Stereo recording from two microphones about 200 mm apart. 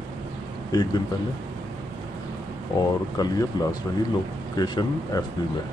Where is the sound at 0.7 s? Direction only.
20° left (ahead or behind).